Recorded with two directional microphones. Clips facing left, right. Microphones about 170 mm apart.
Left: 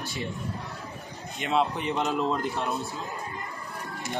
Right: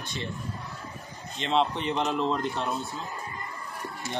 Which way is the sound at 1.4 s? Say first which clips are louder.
Even; 10° left (ahead or behind).